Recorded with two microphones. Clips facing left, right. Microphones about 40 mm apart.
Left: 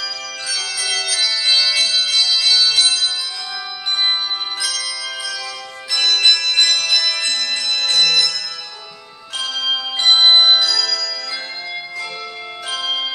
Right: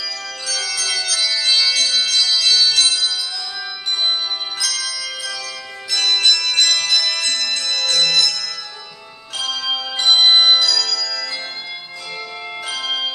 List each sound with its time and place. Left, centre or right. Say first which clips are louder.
0.5 s music: even; centre
4.7 s bell: left 1 dB; centre
6.1 s music: left 1 dB; left
6.6 s music: left 1 dB; centre
9.4 s bell: left 1 dB; centre
12.7 s music: left 1 dB; centre